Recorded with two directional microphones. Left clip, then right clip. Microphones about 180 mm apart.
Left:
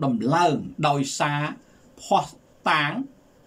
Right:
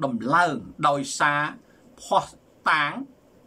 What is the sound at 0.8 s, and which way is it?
Speech, 10° left (ahead or behind).